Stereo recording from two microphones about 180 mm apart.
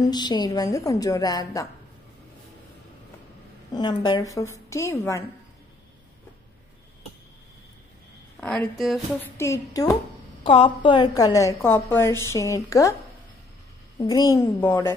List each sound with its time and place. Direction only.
0.0 s a woman's voice: 25° left (ahead or behind)
3.7 s a woman's voice: 25° left (ahead or behind)
8.4 s a woman's voice: 5° left (ahead or behind)
9.2 s a woman's voice: 15° left (ahead or behind)
10.4 s a woman's voice: 30° left (ahead or behind)
13.9 s a woman's voice: 20° left (ahead or behind)